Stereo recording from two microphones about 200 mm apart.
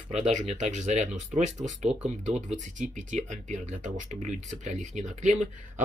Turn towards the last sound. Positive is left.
turn(degrees=-35)  # may be behind; listen again after turning